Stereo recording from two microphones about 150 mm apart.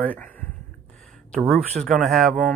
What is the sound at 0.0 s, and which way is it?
Speech, 10° left (ahead or behind).